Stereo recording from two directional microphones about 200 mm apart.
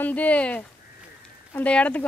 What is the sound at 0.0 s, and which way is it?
Speech, 5° left (ahead or behind).